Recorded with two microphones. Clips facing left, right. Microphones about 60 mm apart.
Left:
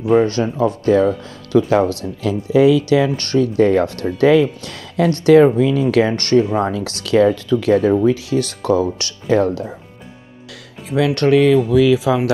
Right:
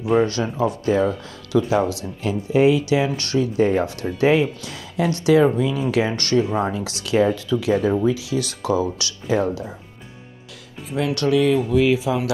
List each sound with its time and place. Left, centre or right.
0.3 s speech: left
2.2 s speech: left
2.8 s speech: left
3.3 s speech: left
9.3 s speech: left
10.9 s speech: left
11.1 s speech: left